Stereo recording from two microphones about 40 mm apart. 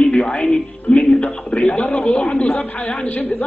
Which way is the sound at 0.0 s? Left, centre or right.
Left.